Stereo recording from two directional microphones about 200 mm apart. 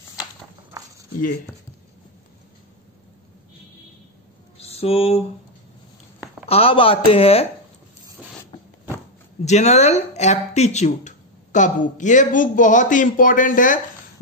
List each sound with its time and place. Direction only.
0.7 s a sound: 15° right (ahead or behind)
4.6 s mantra: 30° left (ahead or behind)
6.4 s a man's voice: 30° left (ahead or behind)
9.4 s speech: 35° left (ahead or behind)